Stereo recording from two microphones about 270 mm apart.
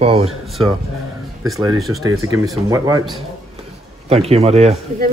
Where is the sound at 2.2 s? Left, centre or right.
Centre.